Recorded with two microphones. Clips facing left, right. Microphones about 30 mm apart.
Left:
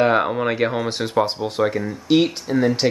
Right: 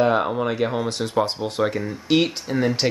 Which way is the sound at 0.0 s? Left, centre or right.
Centre.